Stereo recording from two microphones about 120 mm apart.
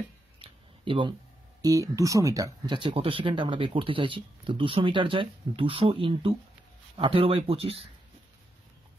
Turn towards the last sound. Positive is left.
turn(degrees=-55)  # may be behind; listen again after turning